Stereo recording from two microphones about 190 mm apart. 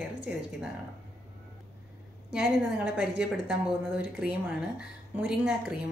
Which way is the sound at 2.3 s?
5° right (ahead or behind).